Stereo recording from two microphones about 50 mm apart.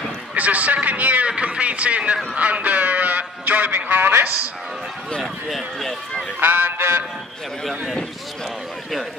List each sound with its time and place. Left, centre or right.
0.3 s a man's voice: right
5.2 s speech: centre
6.4 s a sound: right